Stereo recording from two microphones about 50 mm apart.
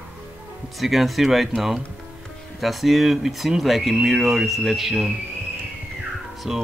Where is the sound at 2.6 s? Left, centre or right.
Centre.